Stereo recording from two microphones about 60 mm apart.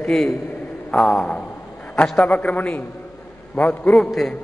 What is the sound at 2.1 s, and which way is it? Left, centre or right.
A man's voice, left.